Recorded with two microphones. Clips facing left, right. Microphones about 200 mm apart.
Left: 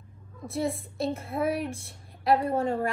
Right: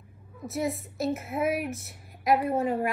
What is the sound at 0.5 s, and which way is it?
Speech, 30° left (ahead or behind).